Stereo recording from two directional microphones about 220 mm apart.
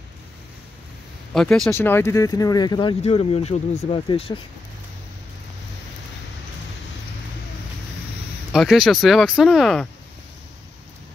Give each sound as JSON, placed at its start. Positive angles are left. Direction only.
{"t": 1.3, "sound": "speech", "side_deg": 0}
{"t": 8.5, "sound": "speech", "side_deg": 0}